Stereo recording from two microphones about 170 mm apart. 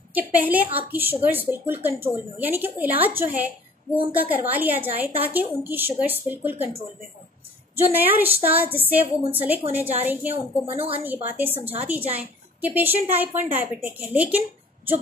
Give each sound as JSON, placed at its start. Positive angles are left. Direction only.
{"t": 0.1, "sound": "a woman's voice", "side_deg": -10}
{"t": 7.7, "sound": "a woman's voice", "side_deg": -10}
{"t": 10.3, "sound": "a woman's voice", "side_deg": -35}
{"t": 11.2, "sound": "a woman's voice", "side_deg": -10}